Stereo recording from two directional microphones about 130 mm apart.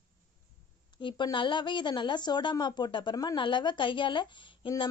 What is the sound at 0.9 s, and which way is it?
Speech, 35° left (ahead or behind).